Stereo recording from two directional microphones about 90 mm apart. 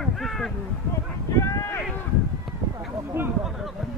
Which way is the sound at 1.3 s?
35° left (ahead or behind).